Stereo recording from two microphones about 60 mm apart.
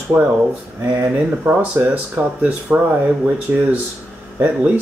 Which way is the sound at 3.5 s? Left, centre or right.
Right.